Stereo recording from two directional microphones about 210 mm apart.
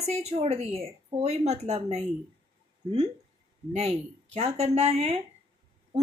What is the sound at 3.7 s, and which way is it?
Speech, 30° right (ahead or behind).